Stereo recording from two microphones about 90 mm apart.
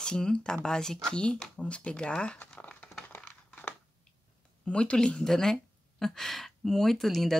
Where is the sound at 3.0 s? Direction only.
15° left (ahead or behind).